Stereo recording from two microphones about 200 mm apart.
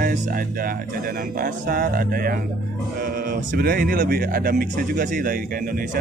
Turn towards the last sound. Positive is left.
turn(degrees=-45)  # may be behind; listen again after turning